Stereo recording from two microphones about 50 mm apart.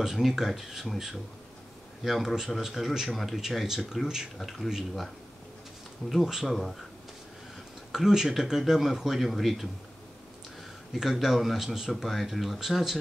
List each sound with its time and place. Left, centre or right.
0.0 s a man's voice: centre
3.3 s a man's voice: centre
6.0 s a man's voice: centre
7.9 s a man's voice: centre
10.9 s a man's voice: centre